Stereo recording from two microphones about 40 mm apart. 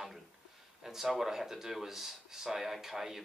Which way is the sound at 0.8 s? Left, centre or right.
Centre.